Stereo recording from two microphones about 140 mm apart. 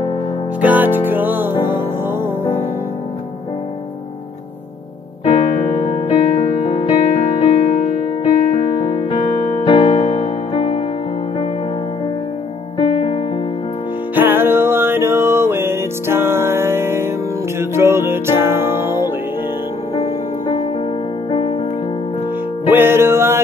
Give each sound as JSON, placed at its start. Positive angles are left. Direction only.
{"t": 0.6, "sound": "music", "side_deg": -10}
{"t": 5.2, "sound": "music", "side_deg": 55}
{"t": 12.7, "sound": "music", "side_deg": 45}
{"t": 14.1, "sound": "music", "side_deg": -15}
{"t": 20.0, "sound": "music", "side_deg": 40}
{"t": 22.7, "sound": "music", "side_deg": -15}